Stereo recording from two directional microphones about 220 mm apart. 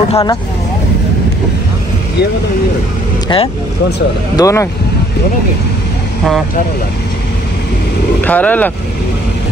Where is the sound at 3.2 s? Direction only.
20° left (ahead or behind).